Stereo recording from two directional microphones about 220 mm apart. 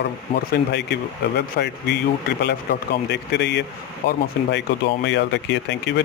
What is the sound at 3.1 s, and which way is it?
Speech, 50° left (ahead or behind).